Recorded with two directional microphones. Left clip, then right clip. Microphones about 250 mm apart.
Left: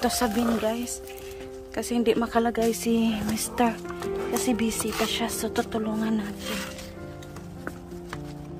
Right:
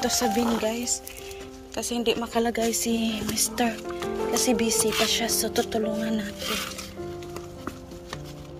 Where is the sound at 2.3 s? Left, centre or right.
Centre.